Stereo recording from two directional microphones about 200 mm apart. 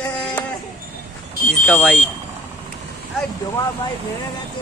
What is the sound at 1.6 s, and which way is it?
Speech, 5° left (ahead or behind).